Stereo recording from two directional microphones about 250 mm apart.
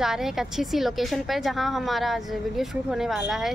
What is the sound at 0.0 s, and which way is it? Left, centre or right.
A woman's voice, centre.